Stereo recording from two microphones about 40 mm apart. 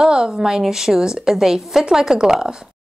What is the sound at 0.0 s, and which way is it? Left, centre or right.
A woman's voice, centre.